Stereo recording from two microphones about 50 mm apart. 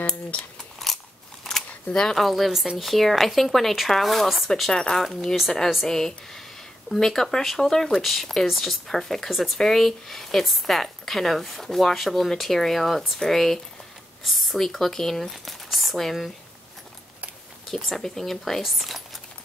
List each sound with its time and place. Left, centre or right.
0.8 s biting: centre
1.5 s camera: centre
1.9 s speech: centre
2.1 s speech: centre
5.9 s speech: centre
17.6 s speech: centre